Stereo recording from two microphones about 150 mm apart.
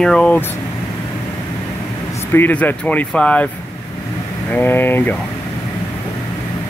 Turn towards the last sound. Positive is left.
turn(degrees=10)  # may be behind; listen again after turning